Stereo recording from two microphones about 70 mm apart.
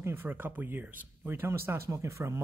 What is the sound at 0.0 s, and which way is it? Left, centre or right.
Speech, right.